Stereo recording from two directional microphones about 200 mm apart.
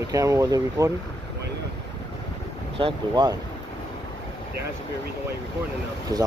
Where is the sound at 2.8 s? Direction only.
20° right (ahead or behind).